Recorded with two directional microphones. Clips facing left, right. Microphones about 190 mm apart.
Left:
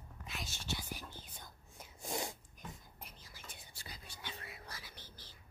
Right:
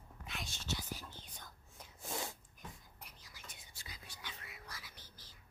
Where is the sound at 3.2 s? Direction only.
30° left (ahead or behind).